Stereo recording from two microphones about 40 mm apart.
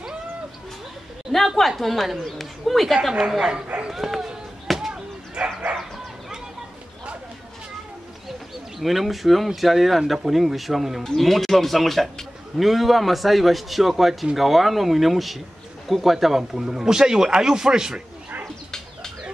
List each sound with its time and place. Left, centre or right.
1.8 s speech: centre
4.6 s chop: centre
5.3 s bow-wow: right
8.7 s speech: centre